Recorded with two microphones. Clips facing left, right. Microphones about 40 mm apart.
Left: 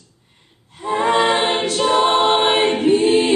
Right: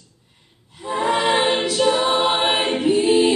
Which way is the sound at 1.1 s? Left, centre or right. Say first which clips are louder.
Even; left.